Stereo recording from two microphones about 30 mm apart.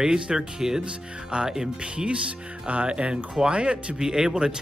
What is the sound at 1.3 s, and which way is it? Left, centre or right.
Speech, right.